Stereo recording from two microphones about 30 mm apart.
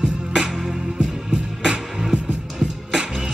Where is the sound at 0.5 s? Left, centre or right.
Centre.